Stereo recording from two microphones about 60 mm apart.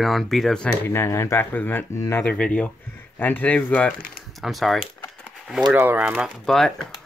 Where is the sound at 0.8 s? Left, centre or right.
Left.